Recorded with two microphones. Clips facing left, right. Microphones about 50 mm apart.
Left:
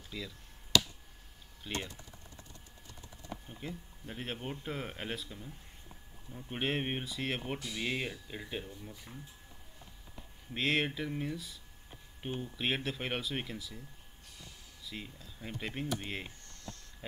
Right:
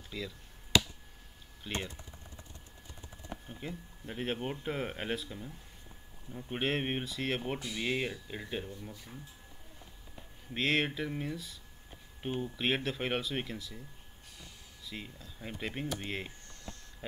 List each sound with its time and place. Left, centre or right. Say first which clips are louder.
0.1 s speech: right 2 dB; centre
1.6 s speech: right 1 dB; centre
3.6 s speech: right 2 dB; centre
10.5 s speech: right 1 dB; centre
14.9 s speech: right 1 dB; centre